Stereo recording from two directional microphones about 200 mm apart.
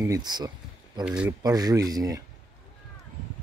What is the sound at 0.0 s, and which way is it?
Speech, 20° right (ahead or behind).